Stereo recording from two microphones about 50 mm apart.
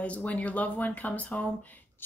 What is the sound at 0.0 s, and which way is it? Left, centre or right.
Speech, left.